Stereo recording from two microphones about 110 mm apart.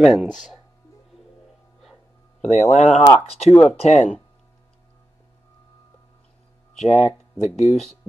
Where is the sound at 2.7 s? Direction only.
90° left.